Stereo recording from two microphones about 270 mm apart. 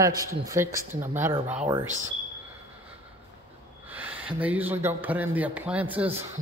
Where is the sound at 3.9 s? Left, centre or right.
Centre.